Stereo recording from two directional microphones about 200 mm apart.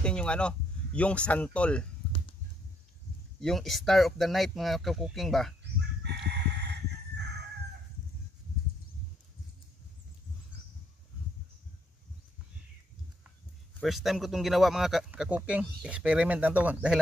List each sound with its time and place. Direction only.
0.0 s speech: 5° left (ahead or behind)
3.3 s speech: centre (ahead or behind)
5.6 s chicken: 55° right (ahead or behind)
13.7 s speech: centre (ahead or behind)